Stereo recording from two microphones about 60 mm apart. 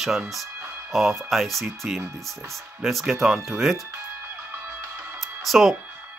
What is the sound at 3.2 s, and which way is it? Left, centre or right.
Speech, centre.